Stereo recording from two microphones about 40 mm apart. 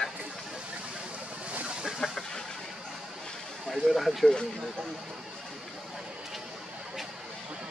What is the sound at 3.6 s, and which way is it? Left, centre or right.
Speech, centre.